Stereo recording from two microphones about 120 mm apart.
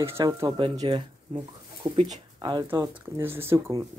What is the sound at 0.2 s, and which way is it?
Speech, 35° right (ahead or behind).